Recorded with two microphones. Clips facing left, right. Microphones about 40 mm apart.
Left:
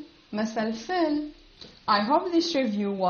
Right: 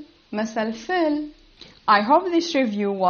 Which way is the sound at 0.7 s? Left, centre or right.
Right.